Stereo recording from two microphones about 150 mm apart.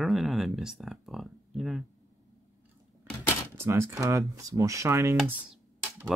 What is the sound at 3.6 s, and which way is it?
Speech, 15° right (ahead or behind).